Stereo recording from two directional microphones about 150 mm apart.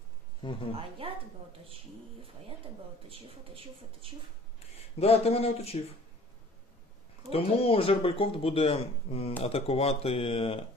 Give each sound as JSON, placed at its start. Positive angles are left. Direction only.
{"t": 0.4, "sound": "speech", "side_deg": 30}
{"t": 0.7, "sound": "a woman's voice", "side_deg": -35}
{"t": 3.1, "sound": "a woman's voice", "side_deg": -35}
{"t": 4.9, "sound": "speech", "side_deg": 40}
{"t": 7.2, "sound": "speech", "side_deg": 40}